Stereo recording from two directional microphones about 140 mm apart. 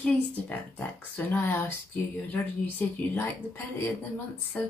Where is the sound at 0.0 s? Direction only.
10° left (ahead or behind).